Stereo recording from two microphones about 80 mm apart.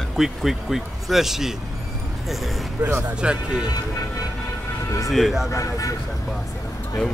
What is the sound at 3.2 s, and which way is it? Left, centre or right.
Speech, centre.